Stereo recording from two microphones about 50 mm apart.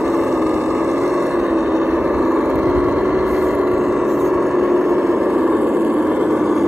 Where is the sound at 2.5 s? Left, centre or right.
Right.